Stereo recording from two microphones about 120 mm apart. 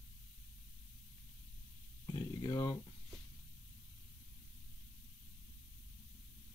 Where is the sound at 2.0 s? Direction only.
35° left (ahead or behind).